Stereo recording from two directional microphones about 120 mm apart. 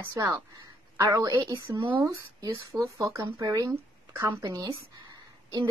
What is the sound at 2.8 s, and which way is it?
A woman's voice, 20° right (ahead or behind).